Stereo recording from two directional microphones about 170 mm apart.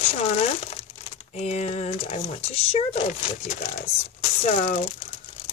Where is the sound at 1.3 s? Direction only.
40° left (ahead or behind).